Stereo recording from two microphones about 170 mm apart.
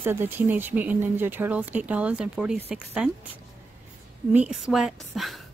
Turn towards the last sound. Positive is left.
turn(degrees=0)  # may be behind; listen again after turning